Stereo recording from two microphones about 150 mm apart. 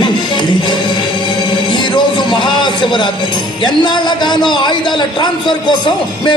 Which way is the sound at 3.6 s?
30° left (ahead or behind).